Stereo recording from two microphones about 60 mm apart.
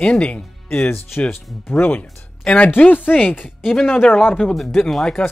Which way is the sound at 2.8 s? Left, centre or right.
Left.